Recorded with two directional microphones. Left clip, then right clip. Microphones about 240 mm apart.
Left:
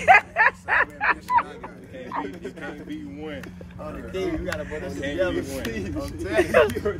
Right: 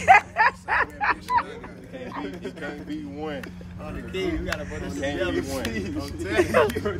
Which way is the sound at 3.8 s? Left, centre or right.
Centre.